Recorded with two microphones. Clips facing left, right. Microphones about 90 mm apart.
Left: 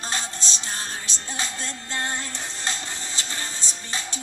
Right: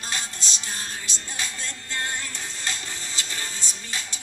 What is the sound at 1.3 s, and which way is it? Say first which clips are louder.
Music: left 3 dB; 30° left (ahead or behind).